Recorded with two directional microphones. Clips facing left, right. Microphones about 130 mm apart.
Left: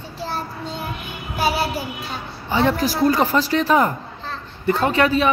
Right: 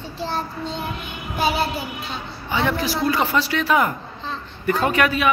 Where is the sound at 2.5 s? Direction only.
35° left (ahead or behind).